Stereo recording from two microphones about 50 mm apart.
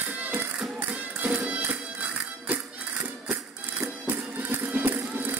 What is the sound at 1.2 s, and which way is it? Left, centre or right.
Music, right.